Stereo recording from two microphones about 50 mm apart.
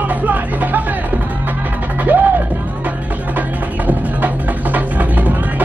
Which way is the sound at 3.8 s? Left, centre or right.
Right.